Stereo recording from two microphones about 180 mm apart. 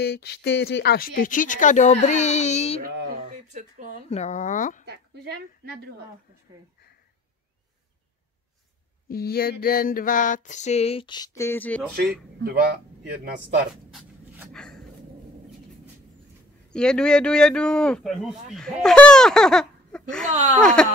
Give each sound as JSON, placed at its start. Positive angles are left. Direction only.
{"t": 0.0, "sound": "a woman's voice", "side_deg": 60}
{"t": 2.8, "sound": "a sound", "side_deg": -55}
{"t": 3.2, "sound": "a sound", "side_deg": -40}
{"t": 4.1, "sound": "a woman's voice", "side_deg": 40}
{"t": 4.8, "sound": "a woman's voice", "side_deg": -70}
{"t": 9.1, "sound": "a woman's voice", "side_deg": 55}
{"t": 12.0, "sound": "a man's voice", "side_deg": -55}
{"t": 14.5, "sound": "speech", "side_deg": 5}
{"t": 16.7, "sound": "a man's voice", "side_deg": 5}